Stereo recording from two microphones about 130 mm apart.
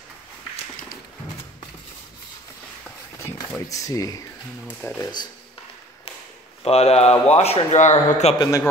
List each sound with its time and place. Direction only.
3.6 s speech: 25° left (ahead or behind)
6.6 s speech: 50° left (ahead or behind)
8.4 s speech: 25° left (ahead or behind)